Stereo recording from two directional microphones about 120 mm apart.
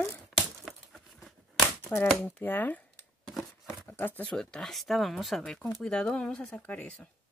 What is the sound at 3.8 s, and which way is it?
Zipper, 15° left (ahead or behind).